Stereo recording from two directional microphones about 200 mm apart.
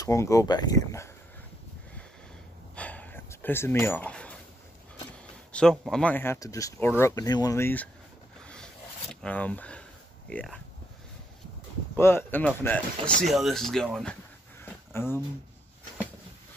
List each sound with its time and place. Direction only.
0.0 s speech: 15° left (ahead or behind)
2.7 s a sound: 5° left (ahead or behind)
5.5 s speech: 5° left (ahead or behind)
9.1 s speech: 5° left (ahead or behind)
12.0 s speech: 10° left (ahead or behind)
14.6 s a sound: 10° left (ahead or behind)